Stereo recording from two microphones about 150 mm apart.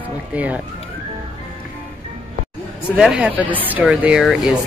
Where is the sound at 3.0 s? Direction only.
5° right (ahead or behind).